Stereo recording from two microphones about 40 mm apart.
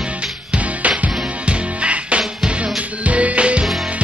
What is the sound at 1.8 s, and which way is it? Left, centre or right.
Music, right.